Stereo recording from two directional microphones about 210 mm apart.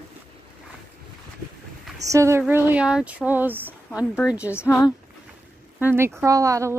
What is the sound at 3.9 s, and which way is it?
Speech, 10° left (ahead or behind).